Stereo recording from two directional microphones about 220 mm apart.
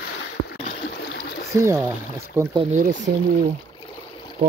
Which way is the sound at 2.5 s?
25° right (ahead or behind).